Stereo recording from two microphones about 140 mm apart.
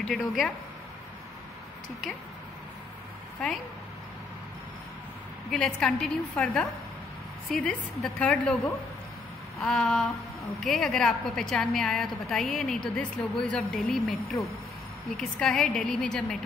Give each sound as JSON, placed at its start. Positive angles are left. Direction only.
{"t": 0.0, "sound": "a woman's voice", "side_deg": 0}
{"t": 5.5, "sound": "a woman's voice", "side_deg": 5}
{"t": 9.6, "sound": "a woman's voice", "side_deg": 0}